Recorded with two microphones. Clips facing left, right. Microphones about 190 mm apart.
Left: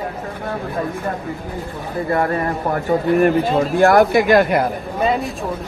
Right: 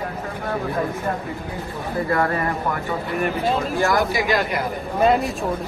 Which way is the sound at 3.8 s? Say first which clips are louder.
Left 10 dB; 60° left (ahead or behind).